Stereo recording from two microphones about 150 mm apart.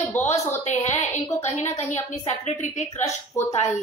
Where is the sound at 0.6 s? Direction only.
50° left (ahead or behind).